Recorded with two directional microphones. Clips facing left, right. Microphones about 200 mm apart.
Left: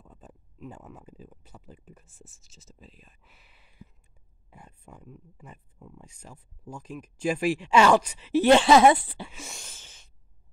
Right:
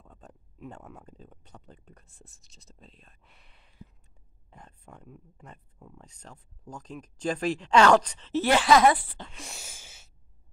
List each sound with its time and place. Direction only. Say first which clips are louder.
0.0 s speech: left 1 dB; 5° left (ahead or behind)
8.5 s speech: left 4 dB; 25° left (ahead or behind)
9.3 s a sound: left 1 dB; centre (ahead or behind)